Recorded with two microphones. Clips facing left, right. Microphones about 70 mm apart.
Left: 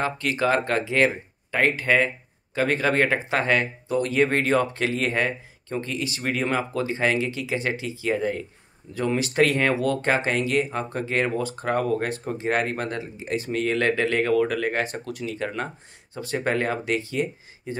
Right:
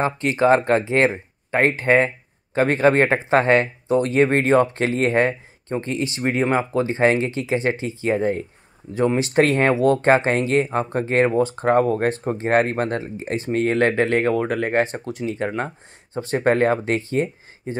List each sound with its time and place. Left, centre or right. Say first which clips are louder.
0.0 s speech: right 5 dB; right